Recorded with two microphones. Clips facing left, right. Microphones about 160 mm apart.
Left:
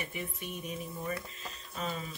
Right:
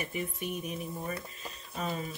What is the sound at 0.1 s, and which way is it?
Speech, 45° right (ahead or behind).